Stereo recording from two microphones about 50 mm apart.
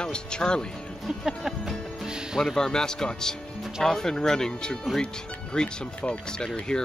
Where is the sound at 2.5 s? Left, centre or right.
Centre.